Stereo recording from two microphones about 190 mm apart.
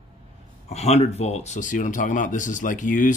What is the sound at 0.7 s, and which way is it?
Speech, 35° left (ahead or behind).